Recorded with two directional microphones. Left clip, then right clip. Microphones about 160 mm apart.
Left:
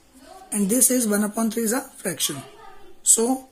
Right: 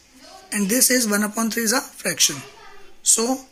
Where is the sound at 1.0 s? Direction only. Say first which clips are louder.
Right 2 dB; 5° right (ahead or behind).